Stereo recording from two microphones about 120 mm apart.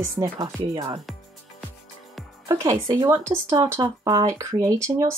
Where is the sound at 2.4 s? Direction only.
25° right (ahead or behind).